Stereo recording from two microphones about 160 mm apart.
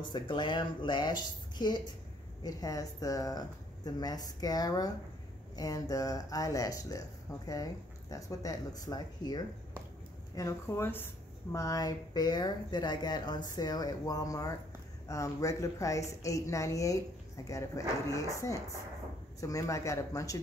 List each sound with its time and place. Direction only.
0.1 s speech: 30° left (ahead or behind)